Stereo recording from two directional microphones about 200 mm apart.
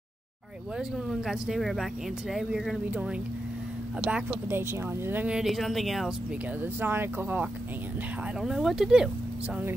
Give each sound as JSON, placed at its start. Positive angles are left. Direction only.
{"t": 0.7, "sound": "speech", "side_deg": 0}
{"t": 4.1, "sound": "speech", "side_deg": -10}
{"t": 6.6, "sound": "speech", "side_deg": -10}